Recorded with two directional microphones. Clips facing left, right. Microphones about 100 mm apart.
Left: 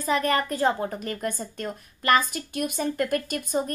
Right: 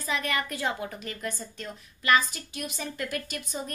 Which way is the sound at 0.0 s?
40° left (ahead or behind).